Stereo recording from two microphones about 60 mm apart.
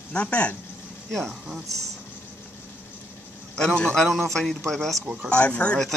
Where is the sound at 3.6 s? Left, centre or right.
Centre.